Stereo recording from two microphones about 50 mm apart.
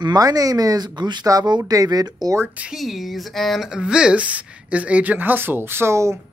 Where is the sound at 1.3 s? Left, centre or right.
Right.